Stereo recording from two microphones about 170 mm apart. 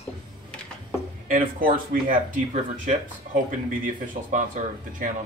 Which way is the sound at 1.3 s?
55° right (ahead or behind).